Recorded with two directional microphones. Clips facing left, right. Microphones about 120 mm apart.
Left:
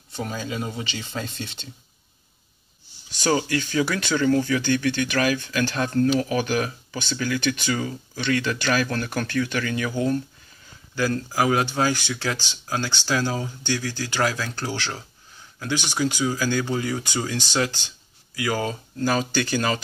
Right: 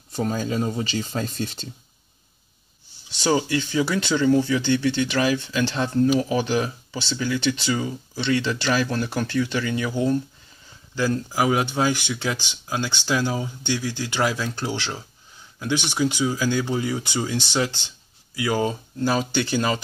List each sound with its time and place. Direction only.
0.1 s speech: 40° right (ahead or behind)
3.2 s speech: 20° right (ahead or behind)
8.8 s speech: 10° right (ahead or behind)